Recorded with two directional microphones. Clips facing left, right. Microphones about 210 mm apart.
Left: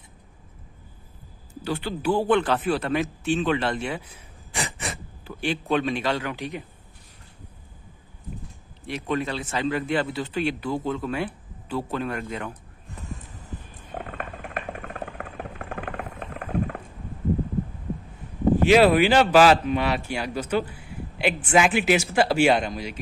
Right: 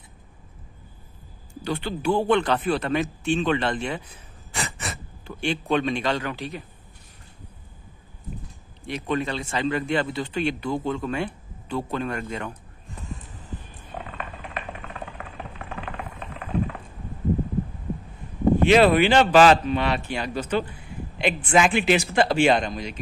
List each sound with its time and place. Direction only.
1.5 s a man's voice: 5° left (ahead or behind)
5.3 s speech: 5° left (ahead or behind)
8.8 s speech: centre (ahead or behind)
13.9 s a sound: 50° left (ahead or behind)
18.6 s speech: 5° left (ahead or behind)